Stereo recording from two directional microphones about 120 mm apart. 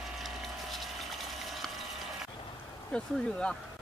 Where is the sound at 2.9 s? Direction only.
10° left (ahead or behind).